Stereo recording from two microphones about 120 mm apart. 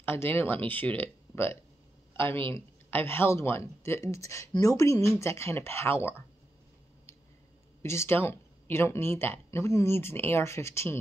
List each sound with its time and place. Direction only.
0.0 s speech: 20° left (ahead or behind)
7.8 s speech: 20° left (ahead or behind)